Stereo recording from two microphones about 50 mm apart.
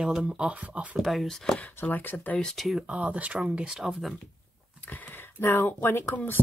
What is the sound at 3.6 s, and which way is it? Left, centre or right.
Speech, centre.